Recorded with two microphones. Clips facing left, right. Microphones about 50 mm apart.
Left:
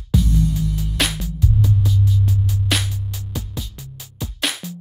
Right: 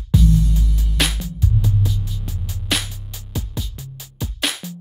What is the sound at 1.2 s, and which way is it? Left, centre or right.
Music, right.